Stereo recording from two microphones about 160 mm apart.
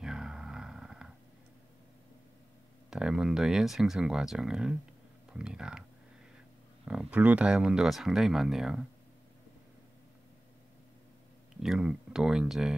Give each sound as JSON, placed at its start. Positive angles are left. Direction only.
{"t": 0.0, "sound": "grunt", "side_deg": -5}
{"t": 2.9, "sound": "speech", "side_deg": -5}
{"t": 6.9, "sound": "speech", "side_deg": -5}
{"t": 11.6, "sound": "speech", "side_deg": -5}